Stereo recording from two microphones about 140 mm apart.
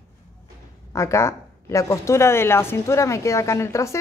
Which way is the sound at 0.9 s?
20° left (ahead or behind).